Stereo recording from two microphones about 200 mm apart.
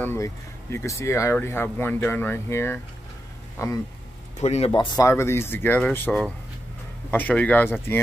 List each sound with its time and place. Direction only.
0.0 s speech: 10° left (ahead or behind)
4.4 s speech: 30° left (ahead or behind); by 8.0 s 10° left (ahead or behind)